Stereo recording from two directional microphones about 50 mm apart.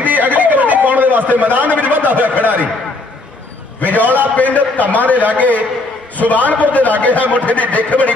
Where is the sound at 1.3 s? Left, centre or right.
Right.